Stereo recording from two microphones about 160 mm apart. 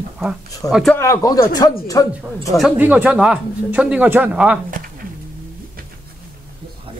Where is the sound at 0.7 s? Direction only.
Centre (ahead or behind).